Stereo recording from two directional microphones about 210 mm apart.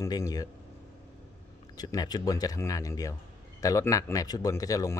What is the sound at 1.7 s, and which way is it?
Speech, 20° left (ahead or behind).